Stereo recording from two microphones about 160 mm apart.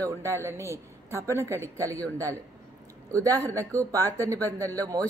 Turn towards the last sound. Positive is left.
turn(degrees=-20)  # may be behind; listen again after turning